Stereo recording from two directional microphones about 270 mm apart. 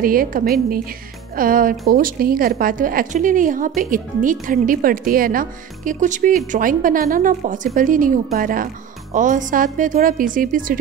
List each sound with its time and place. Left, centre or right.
0.0 s speech: right